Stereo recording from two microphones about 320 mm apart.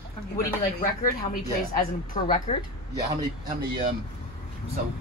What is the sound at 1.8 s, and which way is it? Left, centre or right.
Speech, left.